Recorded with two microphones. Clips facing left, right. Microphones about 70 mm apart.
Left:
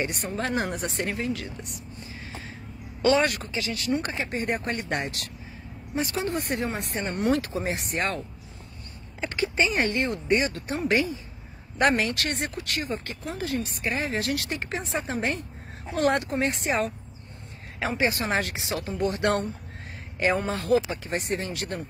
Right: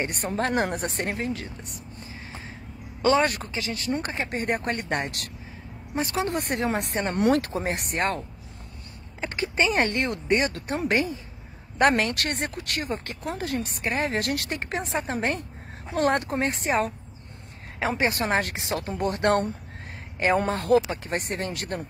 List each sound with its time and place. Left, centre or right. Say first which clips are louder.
0.0 s speech: right 2 dB; right
3.0 s speech: even; right
3.3 s speech: even; right
4.3 s speech: right 2 dB; right
9.2 s a sound: left 1 dB; right
9.6 s speech: right 2 dB; right
20.4 s speech: right 2 dB; right